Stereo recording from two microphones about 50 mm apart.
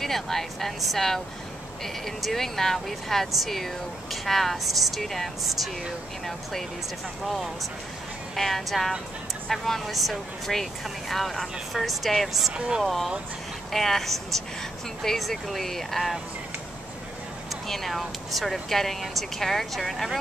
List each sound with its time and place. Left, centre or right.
0.0 s speech: centre
7.2 s speech: centre
12.5 s speech: centre
12.8 s speech: centre
17.6 s speech: centre